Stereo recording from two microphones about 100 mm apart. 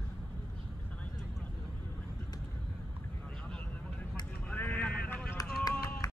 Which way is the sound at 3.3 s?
10° left (ahead or behind).